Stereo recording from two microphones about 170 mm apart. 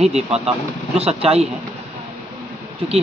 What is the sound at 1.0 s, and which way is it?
Speech, 35° right (ahead or behind).